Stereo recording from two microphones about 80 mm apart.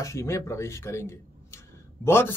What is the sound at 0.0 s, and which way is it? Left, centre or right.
Speech, left.